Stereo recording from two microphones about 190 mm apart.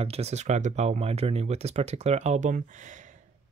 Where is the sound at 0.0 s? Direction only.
35° right (ahead or behind).